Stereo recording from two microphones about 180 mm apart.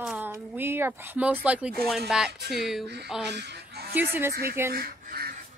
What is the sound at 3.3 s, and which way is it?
Goose, 70° right (ahead or behind).